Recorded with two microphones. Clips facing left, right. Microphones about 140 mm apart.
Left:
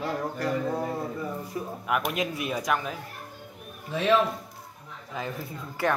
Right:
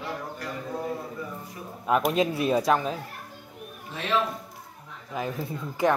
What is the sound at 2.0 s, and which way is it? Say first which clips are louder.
Speech: right 5 dB; 30° right (ahead or behind).